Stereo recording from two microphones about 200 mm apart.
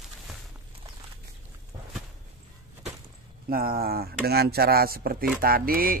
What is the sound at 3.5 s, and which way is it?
Speech, 45° right (ahead or behind).